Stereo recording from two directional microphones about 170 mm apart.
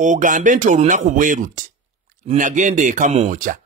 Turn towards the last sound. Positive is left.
turn(degrees=-50)  # may be behind; listen again after turning